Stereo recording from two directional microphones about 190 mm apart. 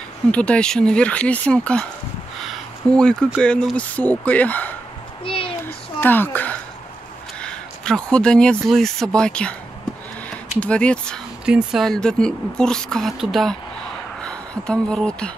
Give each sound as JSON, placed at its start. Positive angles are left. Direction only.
{"t": 0.3, "sound": "a woman's voice", "side_deg": 5}
{"t": 5.2, "sound": "a sound", "side_deg": 30}
{"t": 5.9, "sound": "speech", "side_deg": 10}
{"t": 10.6, "sound": "a woman's voice", "side_deg": 5}